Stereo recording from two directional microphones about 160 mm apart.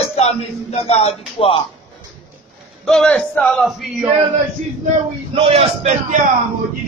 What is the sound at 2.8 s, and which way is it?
Speech, 5° left (ahead or behind).